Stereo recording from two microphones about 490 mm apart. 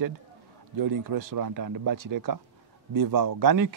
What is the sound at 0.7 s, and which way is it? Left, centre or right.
Speech, right.